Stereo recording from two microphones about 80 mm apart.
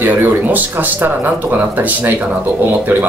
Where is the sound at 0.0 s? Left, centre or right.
Right.